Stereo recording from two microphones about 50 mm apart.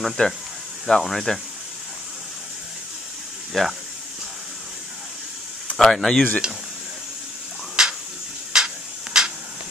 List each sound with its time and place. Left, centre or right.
0.2 s speech: centre
3.6 s speech: centre
5.8 s speech: centre
6.4 s speech: centre
7.8 s a sound: centre